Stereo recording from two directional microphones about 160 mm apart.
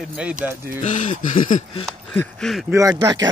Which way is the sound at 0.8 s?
50° left (ahead or behind).